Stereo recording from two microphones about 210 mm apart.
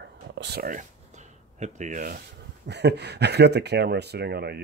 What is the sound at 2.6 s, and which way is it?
Speech, 55° right (ahead or behind).